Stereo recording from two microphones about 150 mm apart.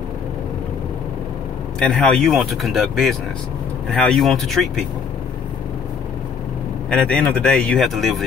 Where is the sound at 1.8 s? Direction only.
5° left (ahead or behind).